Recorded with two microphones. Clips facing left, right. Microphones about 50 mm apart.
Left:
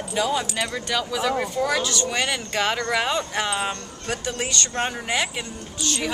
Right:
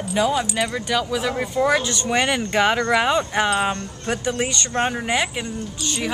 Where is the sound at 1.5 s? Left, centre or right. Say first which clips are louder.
Right 4 dB; right.